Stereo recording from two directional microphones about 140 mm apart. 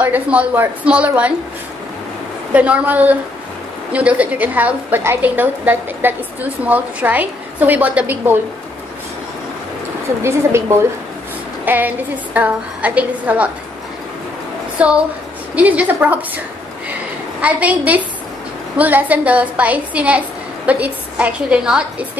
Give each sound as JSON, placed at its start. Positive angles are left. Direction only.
{"t": 0.0, "sound": "a woman's voice", "side_deg": -10}
{"t": 2.5, "sound": "a woman's voice", "side_deg": -10}
{"t": 11.6, "sound": "a woman's voice", "side_deg": -15}
{"t": 14.8, "sound": "a woman's voice", "side_deg": -10}
{"t": 17.4, "sound": "a woman's voice", "side_deg": -10}